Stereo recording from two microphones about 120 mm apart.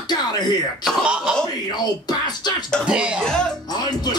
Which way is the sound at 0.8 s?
5° right (ahead or behind).